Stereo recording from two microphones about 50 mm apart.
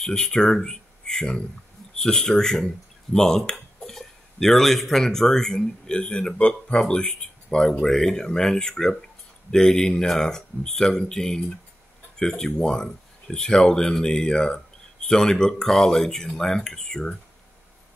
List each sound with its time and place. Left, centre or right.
0.0 s speech: centre